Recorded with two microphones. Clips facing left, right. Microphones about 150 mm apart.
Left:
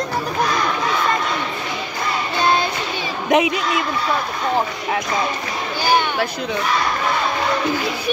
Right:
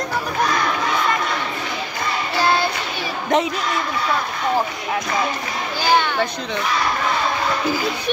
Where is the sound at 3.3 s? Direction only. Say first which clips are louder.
Left 2 dB; 15° left (ahead or behind).